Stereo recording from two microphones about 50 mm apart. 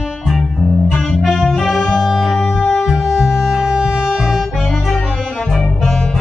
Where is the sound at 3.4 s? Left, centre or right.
Centre.